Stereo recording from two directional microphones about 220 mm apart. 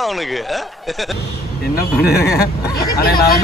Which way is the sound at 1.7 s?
45° left (ahead or behind).